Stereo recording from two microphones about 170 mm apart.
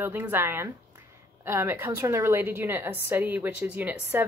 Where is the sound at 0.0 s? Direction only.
10° right (ahead or behind).